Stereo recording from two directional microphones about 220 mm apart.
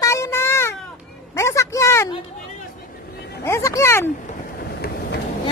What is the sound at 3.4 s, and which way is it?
Speech, 15° left (ahead or behind).